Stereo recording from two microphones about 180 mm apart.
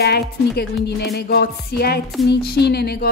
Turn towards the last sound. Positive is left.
turn(degrees=60)  # may be behind; listen again after turning